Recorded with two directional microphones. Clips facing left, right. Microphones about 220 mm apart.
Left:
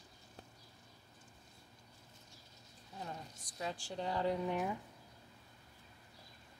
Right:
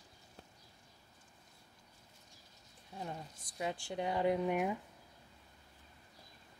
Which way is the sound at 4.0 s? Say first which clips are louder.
Right 3 dB; 15° right (ahead or behind).